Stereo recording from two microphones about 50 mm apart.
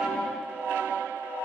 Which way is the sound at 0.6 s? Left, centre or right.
Right.